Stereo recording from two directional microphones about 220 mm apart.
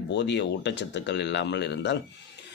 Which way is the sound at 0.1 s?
55° left (ahead or behind).